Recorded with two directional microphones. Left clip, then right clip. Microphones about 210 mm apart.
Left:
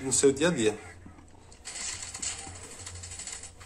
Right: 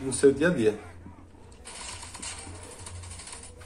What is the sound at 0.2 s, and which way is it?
Speech, 25° left (ahead or behind).